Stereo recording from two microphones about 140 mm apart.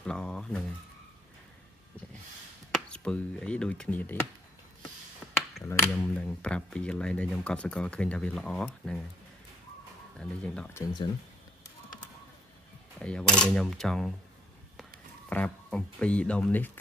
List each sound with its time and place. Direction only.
0.0 s a sound: 5° left (ahead or behind)
2.9 s speech: 5° left (ahead or behind)
5.7 s speech: 15° left (ahead or behind)
10.1 s speech: 5° left (ahead or behind)
10.7 s speech: 25° left (ahead or behind)
13.0 s speech: 5° left (ahead or behind)
15.2 s speech: 10° left (ahead or behind)